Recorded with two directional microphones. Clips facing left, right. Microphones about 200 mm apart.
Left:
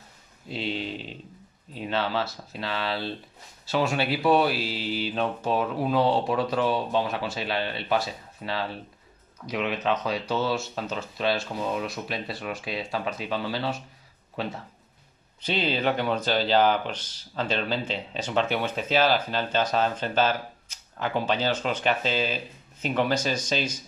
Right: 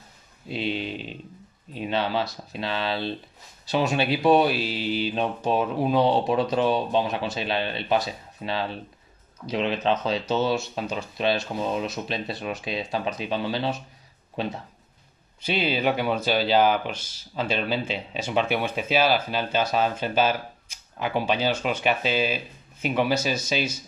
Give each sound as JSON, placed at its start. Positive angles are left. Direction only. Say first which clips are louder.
{"t": 0.5, "sound": "speech", "louder": "right 2 dB", "side_deg": -15}